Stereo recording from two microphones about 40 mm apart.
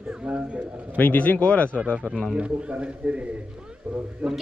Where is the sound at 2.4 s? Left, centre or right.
Right.